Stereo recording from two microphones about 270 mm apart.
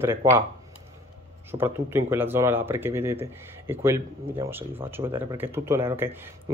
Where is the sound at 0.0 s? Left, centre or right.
Centre.